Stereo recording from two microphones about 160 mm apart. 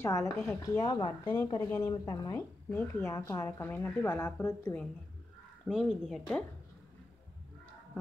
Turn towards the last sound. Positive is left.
turn(degrees=0)  # may be behind; listen again after turning